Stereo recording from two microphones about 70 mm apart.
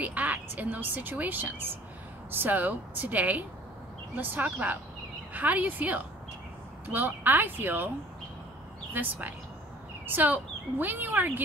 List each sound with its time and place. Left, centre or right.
0.0 s a woman's voice: right
8.9 s a woman's voice: right